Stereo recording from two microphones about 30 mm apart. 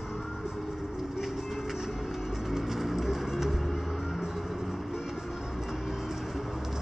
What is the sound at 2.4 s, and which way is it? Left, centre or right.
Music, centre.